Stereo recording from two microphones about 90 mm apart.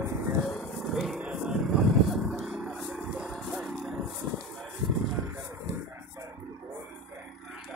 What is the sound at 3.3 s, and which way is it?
Vehicle, centre (ahead or behind).